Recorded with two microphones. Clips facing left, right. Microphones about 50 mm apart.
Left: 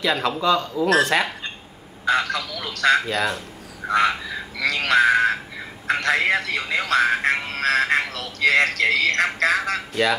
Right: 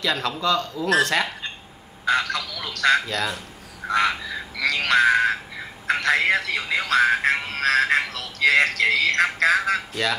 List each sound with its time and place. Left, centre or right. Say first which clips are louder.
0.0 s a man's voice: left 3 dB; centre
2.0 s speech: left 1 dB; centre
3.1 s a man's voice: left 3 dB; centre
3.8 s frog: left 2 dB; centre